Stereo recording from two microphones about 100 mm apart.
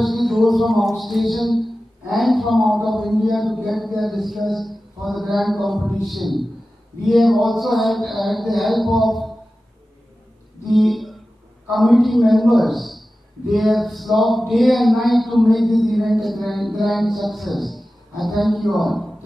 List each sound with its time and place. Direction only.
0.0 s music: centre (ahead or behind)
10.7 s a sound: centre (ahead or behind)
11.7 s music: centre (ahead or behind)